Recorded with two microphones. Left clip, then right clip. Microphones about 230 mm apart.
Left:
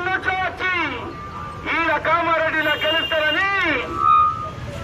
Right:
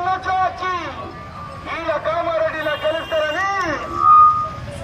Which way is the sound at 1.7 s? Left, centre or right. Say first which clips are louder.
Left 3 dB; left.